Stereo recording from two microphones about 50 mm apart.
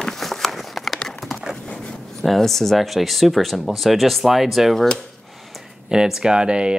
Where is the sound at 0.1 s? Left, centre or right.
Centre.